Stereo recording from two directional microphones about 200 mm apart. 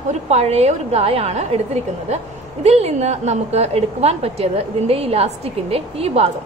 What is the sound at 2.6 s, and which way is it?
A woman's voice, 30° right (ahead or behind).